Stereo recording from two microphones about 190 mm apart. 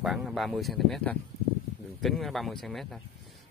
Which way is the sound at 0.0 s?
Centre (ahead or behind).